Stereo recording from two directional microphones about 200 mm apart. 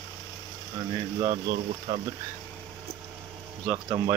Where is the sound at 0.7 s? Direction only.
20° right (ahead or behind).